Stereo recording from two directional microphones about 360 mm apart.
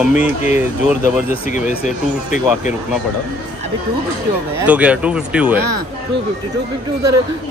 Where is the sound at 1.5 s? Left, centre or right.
Left.